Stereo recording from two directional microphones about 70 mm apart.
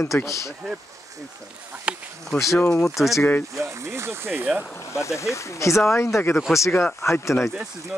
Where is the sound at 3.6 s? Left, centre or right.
Right.